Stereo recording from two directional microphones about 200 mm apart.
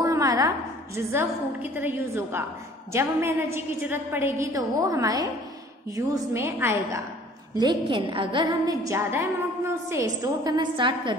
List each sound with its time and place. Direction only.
0.0 s a sound: 15° right (ahead or behind)
0.9 s a woman's voice: 10° right (ahead or behind)
7.5 s a woman's voice: 20° right (ahead or behind)